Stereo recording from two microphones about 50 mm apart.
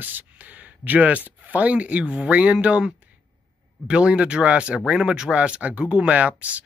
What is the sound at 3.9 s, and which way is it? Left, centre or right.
Speech, right.